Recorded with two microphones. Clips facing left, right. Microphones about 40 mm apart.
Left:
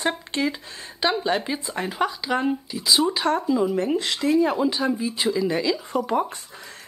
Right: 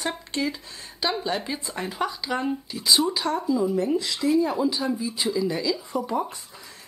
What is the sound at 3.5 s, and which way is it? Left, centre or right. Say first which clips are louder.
Speech: left 1 dB; left.